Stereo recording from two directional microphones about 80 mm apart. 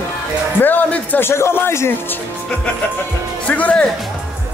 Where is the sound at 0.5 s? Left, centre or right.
Left.